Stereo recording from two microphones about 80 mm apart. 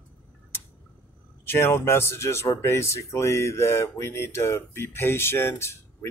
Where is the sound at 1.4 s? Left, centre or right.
Left.